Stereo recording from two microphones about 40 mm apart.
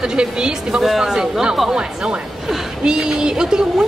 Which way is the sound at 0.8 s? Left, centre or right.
Centre.